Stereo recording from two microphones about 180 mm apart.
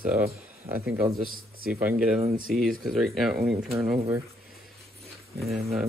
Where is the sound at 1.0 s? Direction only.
55° right (ahead or behind).